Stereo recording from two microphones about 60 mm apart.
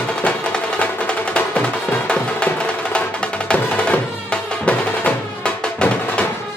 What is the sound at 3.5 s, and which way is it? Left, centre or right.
Music, centre.